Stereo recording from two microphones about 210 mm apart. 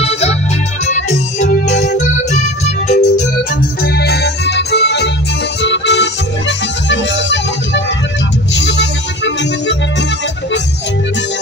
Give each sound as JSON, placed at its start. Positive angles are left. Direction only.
{"t": 0.0, "sound": "music", "side_deg": 30}
{"t": 3.8, "sound": "organ", "side_deg": 50}
{"t": 5.6, "sound": "music", "side_deg": 55}